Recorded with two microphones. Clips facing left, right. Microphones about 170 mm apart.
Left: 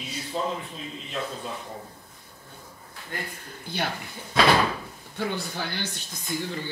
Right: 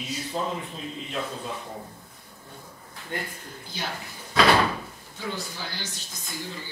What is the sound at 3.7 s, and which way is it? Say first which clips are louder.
Speech: left 5 dB; 60° left (ahead or behind).